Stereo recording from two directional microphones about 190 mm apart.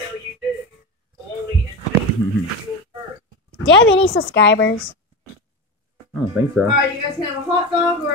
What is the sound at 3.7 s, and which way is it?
A woman's voice, 75° left (ahead or behind).